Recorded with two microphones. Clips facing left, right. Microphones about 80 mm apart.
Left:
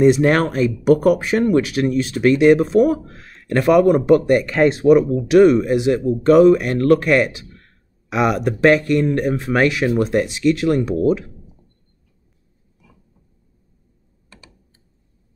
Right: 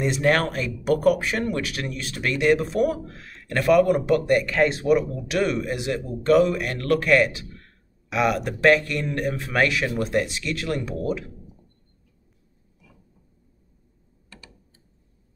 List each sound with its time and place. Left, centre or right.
0.0 s speech: left